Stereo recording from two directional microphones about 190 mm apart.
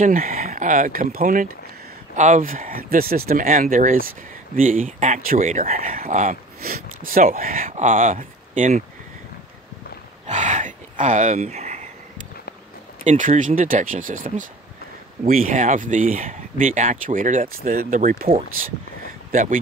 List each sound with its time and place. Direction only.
0.0 s speech: 45° right (ahead or behind)
10.2 s a sound: 40° right (ahead or behind)
13.0 s speech: 35° right (ahead or behind)